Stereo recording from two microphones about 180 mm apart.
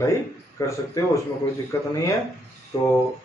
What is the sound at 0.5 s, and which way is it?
A man's voice, 15° left (ahead or behind).